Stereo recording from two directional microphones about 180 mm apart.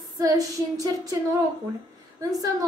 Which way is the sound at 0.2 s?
20° right (ahead or behind).